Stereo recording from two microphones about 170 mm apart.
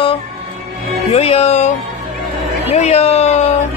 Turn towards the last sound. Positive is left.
turn(degrees=40)  # may be behind; listen again after turning